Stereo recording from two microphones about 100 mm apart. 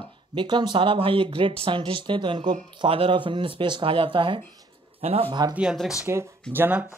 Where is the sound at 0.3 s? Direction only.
50° right (ahead or behind).